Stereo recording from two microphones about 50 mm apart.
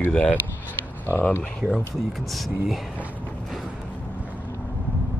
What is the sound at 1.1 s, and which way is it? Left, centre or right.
Speech, left.